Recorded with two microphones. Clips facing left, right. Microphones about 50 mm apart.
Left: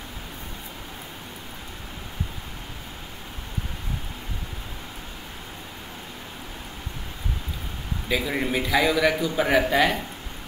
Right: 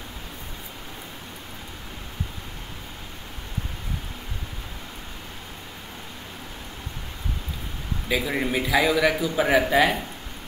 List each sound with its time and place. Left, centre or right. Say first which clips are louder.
8.1 s a man's voice: even; centre